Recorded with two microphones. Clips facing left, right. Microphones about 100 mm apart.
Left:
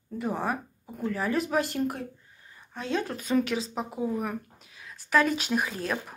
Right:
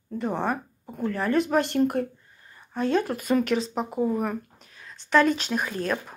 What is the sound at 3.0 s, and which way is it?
Speech, 5° right (ahead or behind).